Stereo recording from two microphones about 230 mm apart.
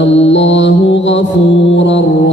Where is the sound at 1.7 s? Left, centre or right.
Left.